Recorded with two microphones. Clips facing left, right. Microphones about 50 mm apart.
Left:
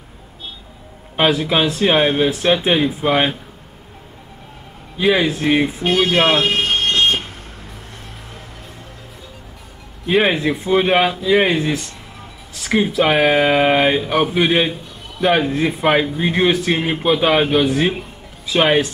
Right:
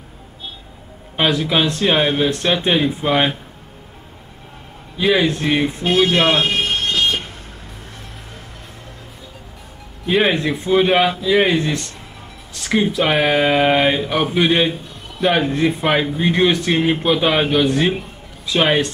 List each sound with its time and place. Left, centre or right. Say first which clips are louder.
1.1 s speech: left 1 dB; centre
4.9 s speech: even; centre
6.4 s vehicle: left 2 dB; left
10.0 s speech: left 1 dB; centre